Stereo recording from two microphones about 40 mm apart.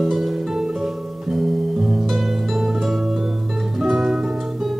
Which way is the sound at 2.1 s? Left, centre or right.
Centre.